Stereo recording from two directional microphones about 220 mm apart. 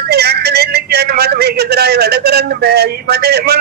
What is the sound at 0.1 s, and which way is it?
A man's voice, 45° right (ahead or behind).